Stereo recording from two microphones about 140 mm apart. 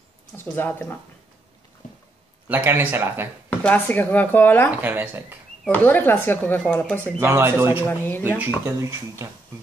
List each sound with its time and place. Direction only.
0.4 s speech: 15° left (ahead or behind)
2.4 s speech: 15° right (ahead or behind)
3.6 s speech: 10° left (ahead or behind)
4.6 s speech: 15° right (ahead or behind)
5.7 s speech: 15° left (ahead or behind)
7.2 s speech: 20° right (ahead or behind)
7.8 s speech: 15° left (ahead or behind)
8.2 s speech: 10° right (ahead or behind)